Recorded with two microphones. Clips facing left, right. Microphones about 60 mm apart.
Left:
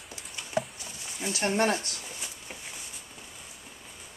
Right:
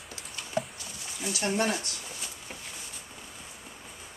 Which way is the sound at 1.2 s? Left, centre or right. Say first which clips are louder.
Left 2 dB; left.